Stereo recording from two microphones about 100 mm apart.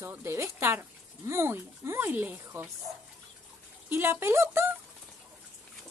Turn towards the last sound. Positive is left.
turn(degrees=-25)  # may be behind; listen again after turning